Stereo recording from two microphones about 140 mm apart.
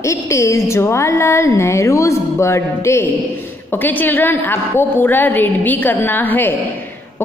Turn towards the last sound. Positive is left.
turn(degrees=15)  # may be behind; listen again after turning